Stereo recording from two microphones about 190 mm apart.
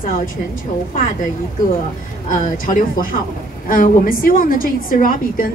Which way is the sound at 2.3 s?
45° left (ahead or behind).